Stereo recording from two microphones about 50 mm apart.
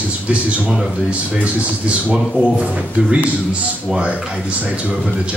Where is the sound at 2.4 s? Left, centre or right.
Right.